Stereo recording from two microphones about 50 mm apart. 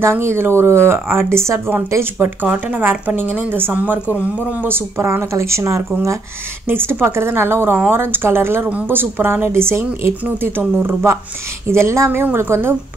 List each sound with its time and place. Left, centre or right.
0.0 s a woman's voice: right
2.4 s speech: right
4.6 s a woman's voice: right
6.7 s speech: right
10.8 s speech: right
11.6 s a woman's voice: right